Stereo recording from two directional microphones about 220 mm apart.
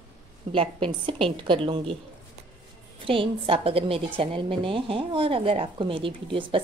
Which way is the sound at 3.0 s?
25° right (ahead or behind).